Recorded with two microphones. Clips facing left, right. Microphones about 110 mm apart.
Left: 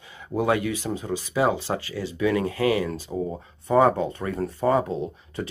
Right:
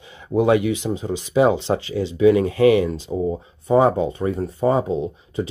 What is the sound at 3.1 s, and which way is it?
Speech, 5° right (ahead or behind).